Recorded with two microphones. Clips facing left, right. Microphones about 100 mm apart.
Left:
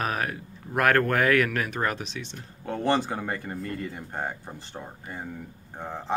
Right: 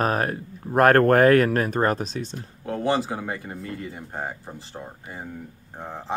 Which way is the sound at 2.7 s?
5° right (ahead or behind).